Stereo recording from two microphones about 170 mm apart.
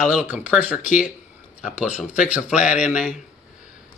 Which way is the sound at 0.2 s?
10° right (ahead or behind).